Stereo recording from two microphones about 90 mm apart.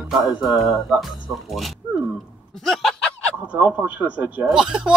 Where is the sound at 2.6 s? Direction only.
5° left (ahead or behind).